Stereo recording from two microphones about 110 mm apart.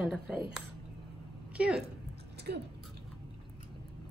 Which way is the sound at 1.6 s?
10° right (ahead or behind).